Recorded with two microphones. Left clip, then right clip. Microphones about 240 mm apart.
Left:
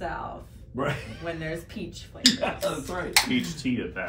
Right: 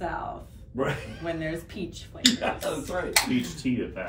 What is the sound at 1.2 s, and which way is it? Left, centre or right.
Speech, centre.